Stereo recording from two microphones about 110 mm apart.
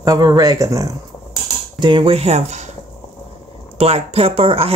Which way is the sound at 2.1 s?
75° right (ahead or behind).